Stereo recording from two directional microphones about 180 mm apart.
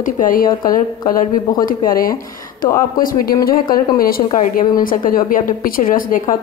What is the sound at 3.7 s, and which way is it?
A woman's voice, 55° left (ahead or behind).